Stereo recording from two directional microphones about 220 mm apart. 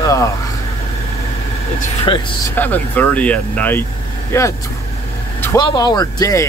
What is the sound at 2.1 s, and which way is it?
Speech, 10° left (ahead or behind).